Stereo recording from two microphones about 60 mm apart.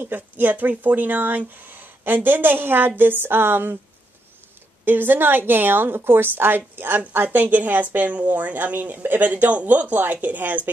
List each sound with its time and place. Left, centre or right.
0.0 s speech: right
4.8 s speech: right